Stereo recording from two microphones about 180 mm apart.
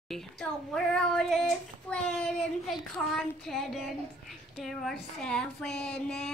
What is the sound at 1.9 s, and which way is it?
Child singing, 5° left (ahead or behind).